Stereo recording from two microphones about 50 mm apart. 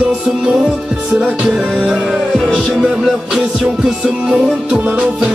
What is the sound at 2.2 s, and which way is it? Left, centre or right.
Music, centre.